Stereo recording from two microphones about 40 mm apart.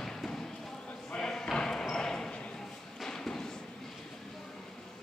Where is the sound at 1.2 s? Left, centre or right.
Centre.